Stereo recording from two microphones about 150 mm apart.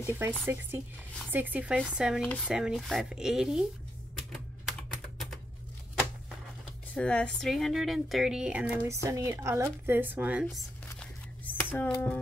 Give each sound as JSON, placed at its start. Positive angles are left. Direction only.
{"t": 0.0, "sound": "speech", "side_deg": -15}
{"t": 4.3, "sound": "typing", "side_deg": 0}
{"t": 7.0, "sound": "speech", "side_deg": 5}
{"t": 8.8, "sound": "speech", "side_deg": -20}
{"t": 10.9, "sound": "a sound", "side_deg": 10}